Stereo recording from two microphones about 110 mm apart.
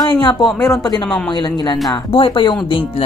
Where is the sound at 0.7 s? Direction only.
35° left (ahead or behind).